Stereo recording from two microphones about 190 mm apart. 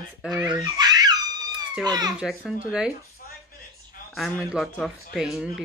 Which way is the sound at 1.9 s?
20° right (ahead or behind).